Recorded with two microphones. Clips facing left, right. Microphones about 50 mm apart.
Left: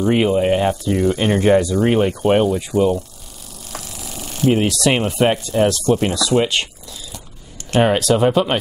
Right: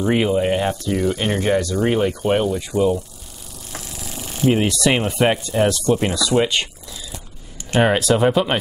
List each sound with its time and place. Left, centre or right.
0.1 s speech: centre
4.5 s speech: centre